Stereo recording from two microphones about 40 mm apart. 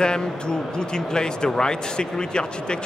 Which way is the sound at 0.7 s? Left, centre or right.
Centre.